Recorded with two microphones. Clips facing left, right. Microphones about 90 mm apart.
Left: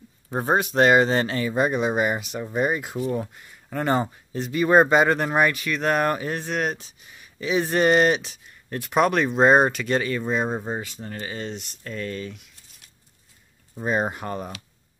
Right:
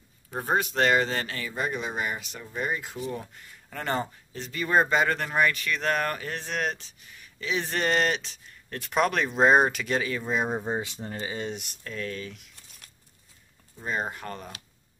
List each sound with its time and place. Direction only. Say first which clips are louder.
0.3 s speech: left 5 dB; 30° left (ahead or behind)
0.6 s speech: left 6 dB; 20° left (ahead or behind)
6.4 s speech: left 4 dB; 5° left (ahead or behind)
10.8 s speech: even; 20° right (ahead or behind); by 12.4 s centre (ahead or behind)
13.8 s speech: left 6 dB; 20° left (ahead or behind)